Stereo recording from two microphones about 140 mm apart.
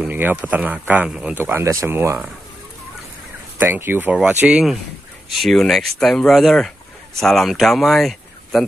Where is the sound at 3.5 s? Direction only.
15° right (ahead or behind).